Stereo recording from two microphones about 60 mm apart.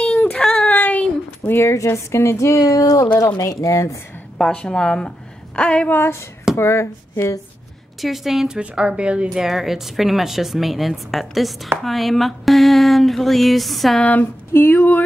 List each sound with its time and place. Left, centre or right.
0.3 s child singing: centre
0.7 s a sound: left
1.7 s speech: left
4.4 s a woman's voice: centre
5.9 s speech: left
8.0 s a woman's voice: centre
8.5 s speech: centre
9.3 s a woman's voice: centre
14.5 s speech: left